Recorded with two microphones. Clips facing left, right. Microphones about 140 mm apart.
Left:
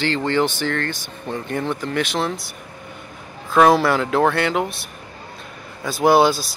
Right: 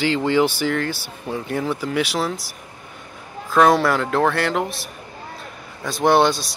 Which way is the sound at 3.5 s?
Centre (ahead or behind).